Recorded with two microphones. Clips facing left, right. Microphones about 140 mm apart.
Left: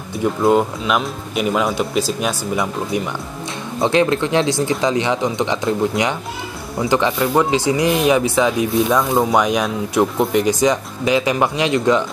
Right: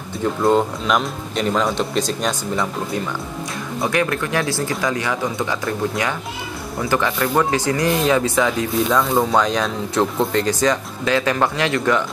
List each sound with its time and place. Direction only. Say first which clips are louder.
0.2 s speech: left 2 dB; 10° left (ahead or behind)